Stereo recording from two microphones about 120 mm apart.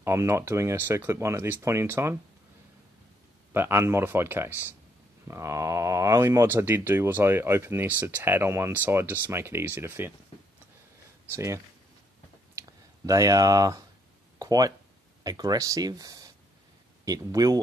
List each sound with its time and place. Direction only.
0.0 s speech: 25° right (ahead or behind)
3.5 s speech: 20° right (ahead or behind)
11.3 s speech: 25° right (ahead or behind)
12.5 s a sound: 30° right (ahead or behind)
15.2 s speech: 30° right (ahead or behind)